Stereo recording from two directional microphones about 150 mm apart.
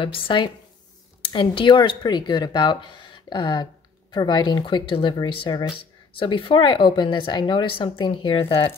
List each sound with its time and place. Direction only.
0.0 s speech: 35° left (ahead or behind)